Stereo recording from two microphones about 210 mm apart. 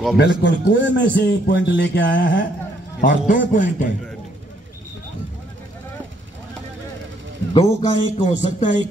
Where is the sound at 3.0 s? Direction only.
40° left (ahead or behind).